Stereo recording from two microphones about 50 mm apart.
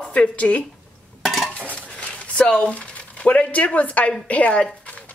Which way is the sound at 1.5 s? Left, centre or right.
Left.